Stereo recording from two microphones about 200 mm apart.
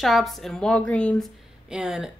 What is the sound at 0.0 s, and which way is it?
A woman's voice, centre (ahead or behind).